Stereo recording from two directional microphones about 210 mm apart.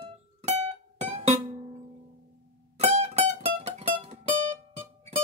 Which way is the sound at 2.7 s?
30° right (ahead or behind).